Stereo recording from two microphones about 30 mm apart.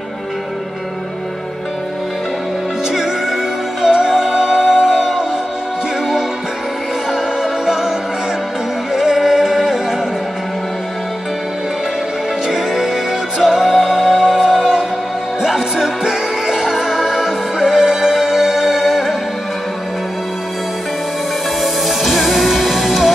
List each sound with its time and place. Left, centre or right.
2.9 s music: centre
7.6 s music: right
8.9 s music: centre
12.4 s music: centre
14.2 s music: centre
21.5 s music: centre